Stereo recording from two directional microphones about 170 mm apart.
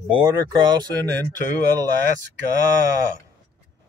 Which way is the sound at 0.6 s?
25° right (ahead or behind).